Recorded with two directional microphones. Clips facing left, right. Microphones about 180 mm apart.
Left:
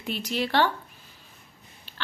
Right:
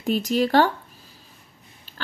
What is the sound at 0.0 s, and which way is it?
Speech, 45° right (ahead or behind).